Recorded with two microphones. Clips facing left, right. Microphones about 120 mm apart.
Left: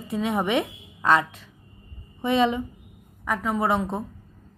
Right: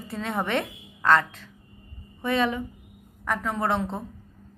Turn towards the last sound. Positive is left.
turn(degrees=10)  # may be behind; listen again after turning